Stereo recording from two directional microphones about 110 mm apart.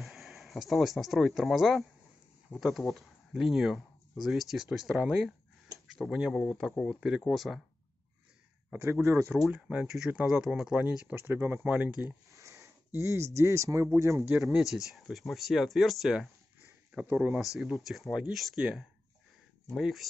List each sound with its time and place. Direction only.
0.0 s speech: centre (ahead or behind)
9.5 s speech: 10° right (ahead or behind)
12.3 s a sound: 30° right (ahead or behind)
13.9 s speech: 25° right (ahead or behind)
14.5 s speech: 5° right (ahead or behind)
17.6 s speech: centre (ahead or behind)